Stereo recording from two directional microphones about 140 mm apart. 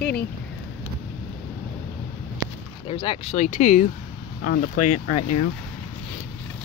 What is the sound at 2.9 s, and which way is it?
Speech, 40° left (ahead or behind).